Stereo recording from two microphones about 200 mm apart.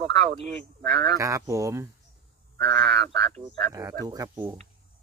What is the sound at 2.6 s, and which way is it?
Speech, centre (ahead or behind).